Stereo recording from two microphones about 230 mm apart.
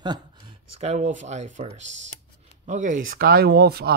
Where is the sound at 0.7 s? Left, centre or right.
Right.